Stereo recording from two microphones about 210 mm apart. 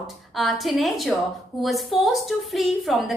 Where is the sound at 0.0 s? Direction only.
Centre (ahead or behind).